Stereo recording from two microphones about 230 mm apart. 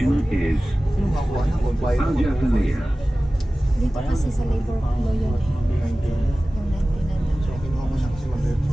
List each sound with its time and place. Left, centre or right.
0.0 s music: centre
1.9 s speech: centre